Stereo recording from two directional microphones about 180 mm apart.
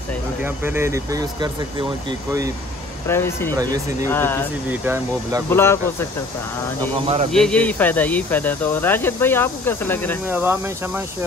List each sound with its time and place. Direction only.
0.4 s speech: 10° right (ahead or behind)
3.1 s speech: 15° left (ahead or behind)
3.5 s speech: 20° right (ahead or behind)
4.1 s speech: 10° left (ahead or behind)
4.6 s speech: 15° right (ahead or behind)
5.5 s speech: 15° left (ahead or behind)
7.3 s speech: 5° left (ahead or behind)
10.2 s speech: 10° right (ahead or behind)